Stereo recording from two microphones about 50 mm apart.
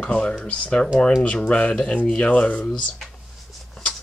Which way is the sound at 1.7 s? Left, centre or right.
Centre.